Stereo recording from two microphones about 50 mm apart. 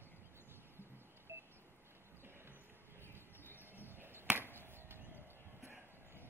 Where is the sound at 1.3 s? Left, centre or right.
Right.